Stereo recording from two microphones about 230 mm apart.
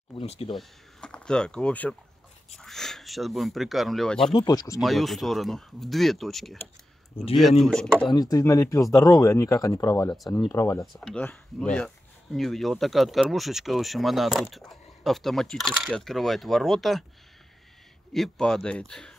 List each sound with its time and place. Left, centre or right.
0.1 s speech: left
0.6 s speech: centre
4.3 s speech: centre
4.7 s speech: centre
8.0 s speech: centre
10.1 s speech: centre
10.5 s speech: centre
18.1 s speech: centre